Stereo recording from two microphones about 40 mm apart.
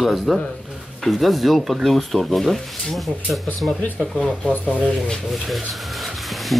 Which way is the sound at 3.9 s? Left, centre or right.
Left.